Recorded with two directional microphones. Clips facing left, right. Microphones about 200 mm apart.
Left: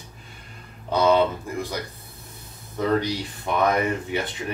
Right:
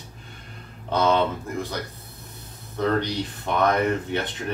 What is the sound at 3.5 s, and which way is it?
Speech, 10° left (ahead or behind).